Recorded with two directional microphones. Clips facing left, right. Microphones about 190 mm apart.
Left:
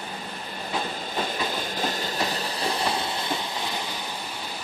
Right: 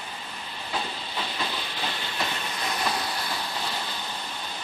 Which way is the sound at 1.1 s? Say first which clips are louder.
Left 5 dB; 45° left (ahead or behind).